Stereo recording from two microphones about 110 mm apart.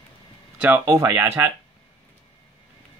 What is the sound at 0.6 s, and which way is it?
Speech, 25° right (ahead or behind).